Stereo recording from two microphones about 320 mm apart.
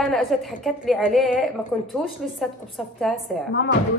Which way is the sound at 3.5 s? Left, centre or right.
Left.